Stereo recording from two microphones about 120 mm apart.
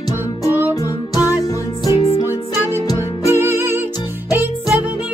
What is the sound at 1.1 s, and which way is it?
Music, 30° left (ahead or behind).